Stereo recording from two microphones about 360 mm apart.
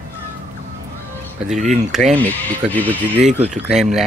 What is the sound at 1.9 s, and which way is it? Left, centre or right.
A man's voice, centre.